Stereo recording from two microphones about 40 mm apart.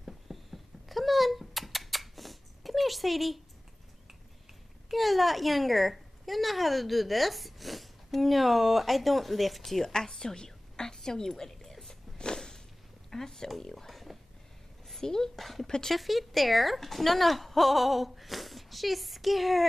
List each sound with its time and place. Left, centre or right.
0.3 s a sound: centre
4.9 s a woman's voice: centre
15.6 s speech: centre
15.9 s a woman's voice: centre